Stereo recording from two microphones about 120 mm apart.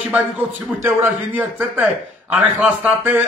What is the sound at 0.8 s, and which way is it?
A man's voice, 15° right (ahead or behind).